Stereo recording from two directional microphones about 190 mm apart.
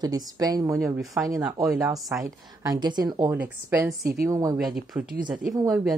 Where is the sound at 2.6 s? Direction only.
20° right (ahead or behind).